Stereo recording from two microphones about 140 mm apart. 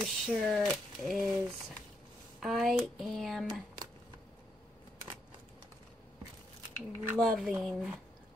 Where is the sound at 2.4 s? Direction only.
Centre (ahead or behind).